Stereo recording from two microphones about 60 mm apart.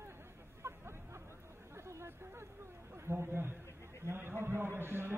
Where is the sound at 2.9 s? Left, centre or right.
Right.